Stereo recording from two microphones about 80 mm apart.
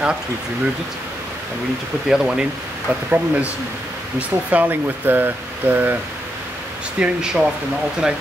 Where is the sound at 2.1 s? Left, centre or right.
Centre.